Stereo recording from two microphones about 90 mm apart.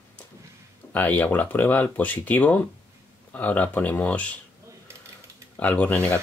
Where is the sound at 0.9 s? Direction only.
20° left (ahead or behind).